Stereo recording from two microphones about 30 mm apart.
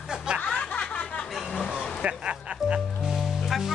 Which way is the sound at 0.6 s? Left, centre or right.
Left.